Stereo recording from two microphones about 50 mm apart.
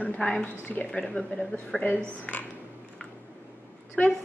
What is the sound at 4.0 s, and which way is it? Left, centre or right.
Speech, left.